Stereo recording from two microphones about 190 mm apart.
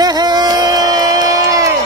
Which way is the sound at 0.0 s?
20° right (ahead or behind).